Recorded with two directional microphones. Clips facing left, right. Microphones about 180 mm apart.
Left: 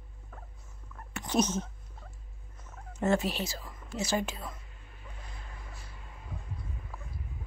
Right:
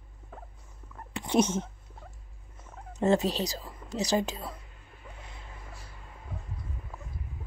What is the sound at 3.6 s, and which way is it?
Speech, 35° right (ahead or behind).